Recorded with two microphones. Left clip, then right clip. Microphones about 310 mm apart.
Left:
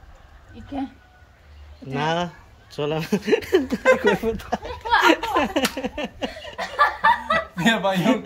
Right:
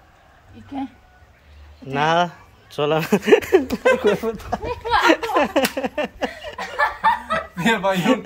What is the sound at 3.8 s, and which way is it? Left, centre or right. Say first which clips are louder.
Speech: left 3 dB; centre.